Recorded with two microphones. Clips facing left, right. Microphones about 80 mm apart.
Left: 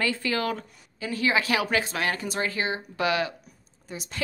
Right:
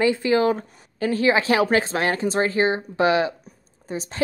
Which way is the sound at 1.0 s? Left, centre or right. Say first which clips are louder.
Right 6 dB; right.